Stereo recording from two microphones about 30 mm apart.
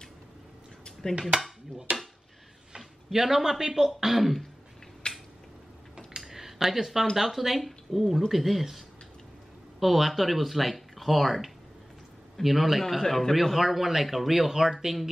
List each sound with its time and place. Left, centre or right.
1.3 s dishes: right
1.9 s stir: right
2.8 s speech: centre
5.0 s a sound: left
6.1 s a sound: centre
7.2 s speech: centre
12.8 s a man's voice: centre
13.3 s speech: centre